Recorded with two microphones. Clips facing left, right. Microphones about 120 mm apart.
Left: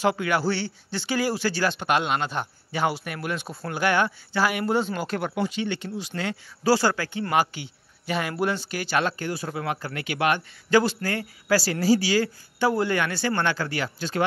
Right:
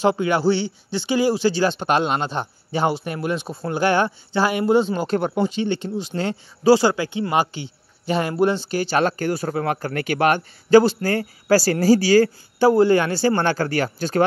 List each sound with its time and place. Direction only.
0.0 s a man's voice: 25° right (ahead or behind)
6.6 s speech: 20° right (ahead or behind); by 14.2 s 45° right (ahead or behind)